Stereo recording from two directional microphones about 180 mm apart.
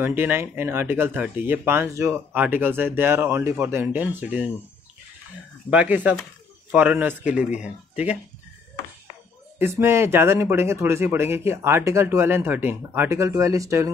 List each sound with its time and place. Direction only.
0.0 s speech: 10° right (ahead or behind)
5.7 s speech: 10° right (ahead or behind)
9.6 s speech: 15° right (ahead or behind)